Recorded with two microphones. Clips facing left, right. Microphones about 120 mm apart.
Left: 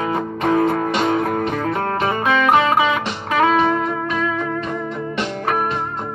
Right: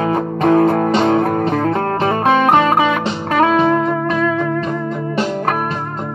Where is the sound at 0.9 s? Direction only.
35° right (ahead or behind).